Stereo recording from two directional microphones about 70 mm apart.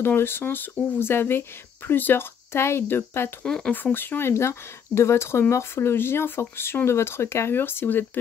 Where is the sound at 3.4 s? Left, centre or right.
Centre.